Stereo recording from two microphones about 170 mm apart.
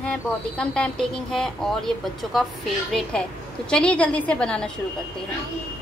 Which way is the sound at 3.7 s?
5° left (ahead or behind).